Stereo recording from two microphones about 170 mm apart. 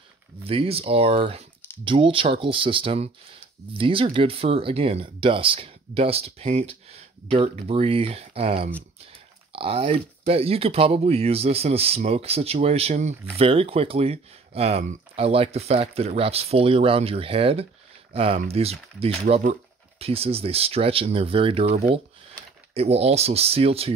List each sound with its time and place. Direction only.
0.5 s speech: 35° right (ahead or behind)